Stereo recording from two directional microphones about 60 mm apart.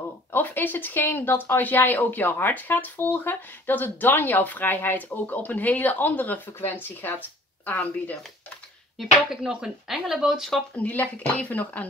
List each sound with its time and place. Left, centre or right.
0.3 s speech: left
7.6 s speech: left
8.9 s speech: centre
10.8 s speech: left